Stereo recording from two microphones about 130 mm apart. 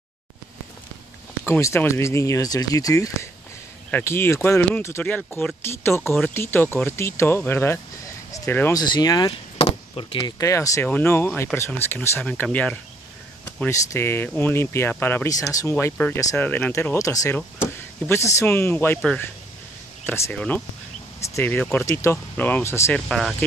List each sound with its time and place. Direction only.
1.4 s speech: 20° left (ahead or behind)
8.7 s speech: 30° left (ahead or behind)
9.6 s chop: 50° left (ahead or behind)
10.1 s speech: 30° left (ahead or behind); by 12.7 s 10° left (ahead or behind)
13.7 s speech: 20° left (ahead or behind)
15.2 s speech: 25° left (ahead or behind)
16.3 s speech: 10° left (ahead or behind)
20.1 s speech: 15° left (ahead or behind)
22.9 s speech: centre (ahead or behind)